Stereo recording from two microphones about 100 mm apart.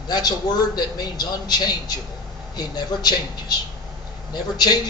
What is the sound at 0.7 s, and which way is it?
A man's voice, 40° left (ahead or behind).